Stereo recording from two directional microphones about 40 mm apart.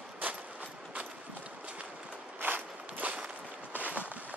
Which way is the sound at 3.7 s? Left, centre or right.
Right.